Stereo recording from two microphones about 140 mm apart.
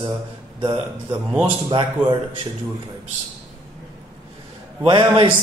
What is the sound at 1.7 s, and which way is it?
Speech, 35° right (ahead or behind).